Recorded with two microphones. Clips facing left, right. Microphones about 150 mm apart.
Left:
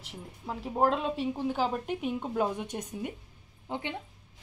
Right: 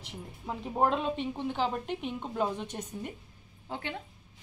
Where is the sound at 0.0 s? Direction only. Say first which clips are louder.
Even; centre (ahead or behind); by 3.9 s 15° left (ahead or behind).